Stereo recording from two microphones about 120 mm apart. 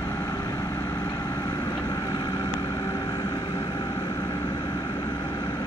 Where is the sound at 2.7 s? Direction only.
25° left (ahead or behind).